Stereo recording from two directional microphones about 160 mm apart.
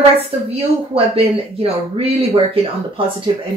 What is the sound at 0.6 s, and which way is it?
A man's voice, 35° right (ahead or behind).